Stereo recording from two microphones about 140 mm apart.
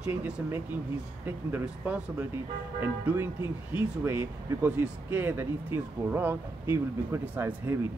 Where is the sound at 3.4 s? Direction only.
35° left (ahead or behind).